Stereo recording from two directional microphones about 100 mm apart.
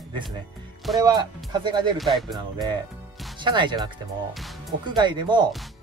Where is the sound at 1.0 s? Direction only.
45° right (ahead or behind).